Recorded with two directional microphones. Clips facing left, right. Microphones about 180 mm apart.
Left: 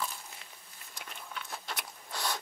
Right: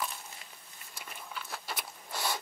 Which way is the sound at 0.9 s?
5° right (ahead or behind).